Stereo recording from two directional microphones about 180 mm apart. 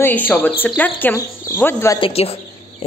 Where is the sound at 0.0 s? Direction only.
10° left (ahead or behind).